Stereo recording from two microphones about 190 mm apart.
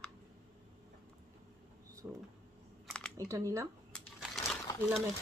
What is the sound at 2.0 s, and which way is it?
Speech, 5° right (ahead or behind).